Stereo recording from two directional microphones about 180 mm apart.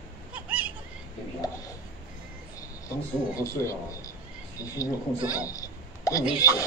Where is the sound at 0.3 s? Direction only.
10° right (ahead or behind).